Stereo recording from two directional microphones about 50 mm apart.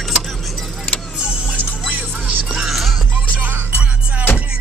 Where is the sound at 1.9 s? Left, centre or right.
Right.